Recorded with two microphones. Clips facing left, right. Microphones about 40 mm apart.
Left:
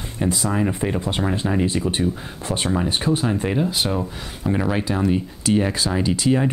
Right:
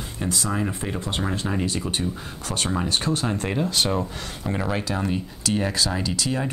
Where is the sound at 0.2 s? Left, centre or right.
Centre.